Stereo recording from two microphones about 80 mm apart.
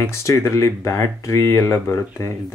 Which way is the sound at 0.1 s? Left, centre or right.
Left.